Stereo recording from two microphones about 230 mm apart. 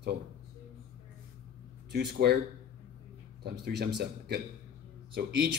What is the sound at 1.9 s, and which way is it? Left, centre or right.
Speech, right.